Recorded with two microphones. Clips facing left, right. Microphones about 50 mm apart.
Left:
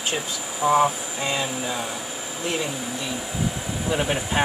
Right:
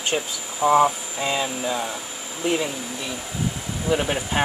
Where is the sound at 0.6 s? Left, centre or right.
Centre.